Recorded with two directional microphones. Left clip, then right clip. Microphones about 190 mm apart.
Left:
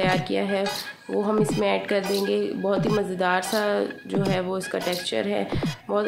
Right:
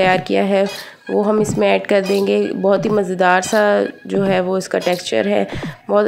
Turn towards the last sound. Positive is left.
turn(degrees=-40)  # may be behind; listen again after turning